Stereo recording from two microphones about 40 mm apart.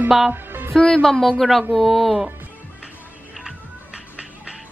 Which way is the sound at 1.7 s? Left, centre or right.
Centre.